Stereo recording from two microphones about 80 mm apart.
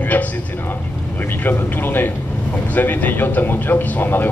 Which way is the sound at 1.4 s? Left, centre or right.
Left.